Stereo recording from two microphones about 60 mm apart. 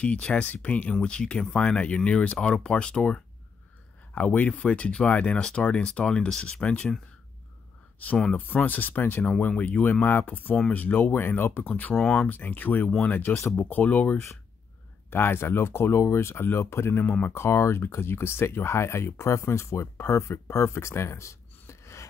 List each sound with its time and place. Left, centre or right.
0.0 s speech: left
8.0 s speech: left
15.0 s speech: left
17.0 s speech: left
17.3 s speech: left